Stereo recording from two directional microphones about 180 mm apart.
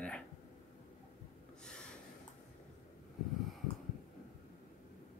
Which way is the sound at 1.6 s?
5° left (ahead or behind).